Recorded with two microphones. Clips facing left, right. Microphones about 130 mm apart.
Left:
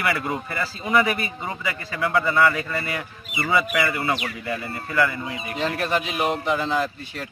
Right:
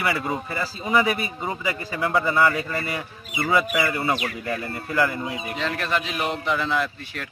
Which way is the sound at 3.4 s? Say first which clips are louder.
Even; centre (ahead or behind).